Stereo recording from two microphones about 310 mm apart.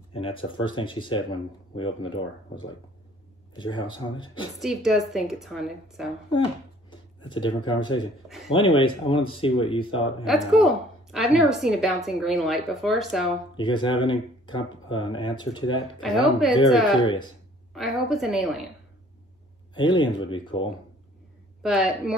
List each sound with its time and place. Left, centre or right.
0.1 s speech: centre
3.5 s speech: centre
4.6 s a woman's voice: centre
6.9 s speech: centre
10.2 s a woman's voice: centre
13.6 s speech: centre
16.0 s a woman's voice: centre
19.7 s speech: centre
21.6 s a woman's voice: centre